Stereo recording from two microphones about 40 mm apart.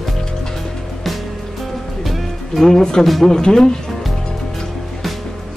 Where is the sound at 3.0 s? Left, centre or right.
Centre.